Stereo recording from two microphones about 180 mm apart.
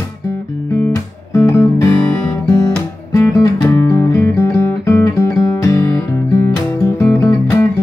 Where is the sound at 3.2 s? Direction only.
10° left (ahead or behind).